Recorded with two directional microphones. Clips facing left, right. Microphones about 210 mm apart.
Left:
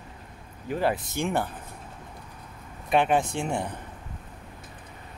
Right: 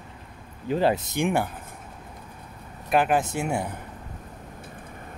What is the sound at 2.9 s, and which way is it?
Speech, 5° right (ahead or behind).